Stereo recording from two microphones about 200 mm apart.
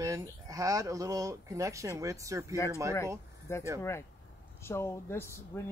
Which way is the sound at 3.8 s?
15° left (ahead or behind).